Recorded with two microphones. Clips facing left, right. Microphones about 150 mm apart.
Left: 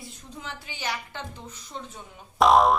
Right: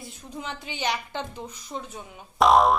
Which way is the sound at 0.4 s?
20° right (ahead or behind).